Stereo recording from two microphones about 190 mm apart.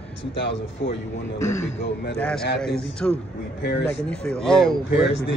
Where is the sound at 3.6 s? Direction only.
65° left (ahead or behind).